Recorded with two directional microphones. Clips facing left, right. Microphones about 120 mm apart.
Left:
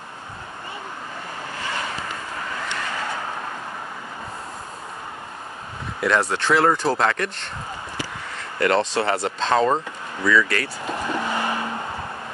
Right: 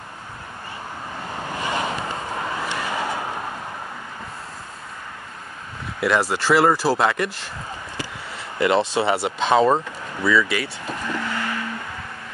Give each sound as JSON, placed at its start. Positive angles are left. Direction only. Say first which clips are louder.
{"t": 1.6, "sound": "vehicle", "louder": "right 4 dB", "side_deg": -20}
{"t": 5.9, "sound": "speech", "louder": "right 1 dB", "side_deg": -5}
{"t": 8.5, "sound": "speech", "louder": "right 1 dB", "side_deg": -10}
{"t": 11.0, "sound": "vehicle", "louder": "left 2 dB", "side_deg": 20}